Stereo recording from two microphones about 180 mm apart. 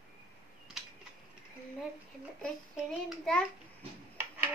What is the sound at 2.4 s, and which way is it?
A child's voice, 5° left (ahead or behind).